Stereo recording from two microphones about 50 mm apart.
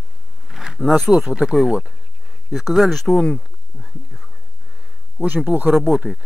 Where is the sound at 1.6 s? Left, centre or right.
Centre.